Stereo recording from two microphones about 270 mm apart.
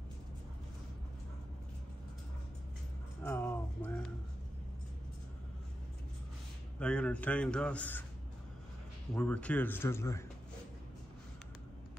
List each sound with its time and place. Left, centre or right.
3.3 s music: centre
6.8 s a man's voice: centre
9.1 s speech: centre